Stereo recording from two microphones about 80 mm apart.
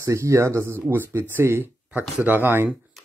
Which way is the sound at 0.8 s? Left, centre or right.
Right.